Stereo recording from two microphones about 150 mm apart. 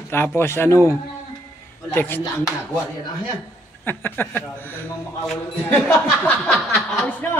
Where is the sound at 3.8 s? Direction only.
15° left (ahead or behind).